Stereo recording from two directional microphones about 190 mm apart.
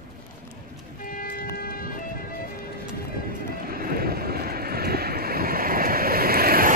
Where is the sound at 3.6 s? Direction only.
50° right (ahead or behind).